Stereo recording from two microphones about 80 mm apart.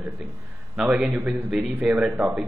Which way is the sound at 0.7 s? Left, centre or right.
Centre.